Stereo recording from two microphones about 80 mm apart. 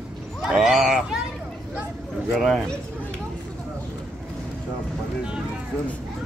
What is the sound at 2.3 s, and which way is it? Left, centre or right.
Speech, centre.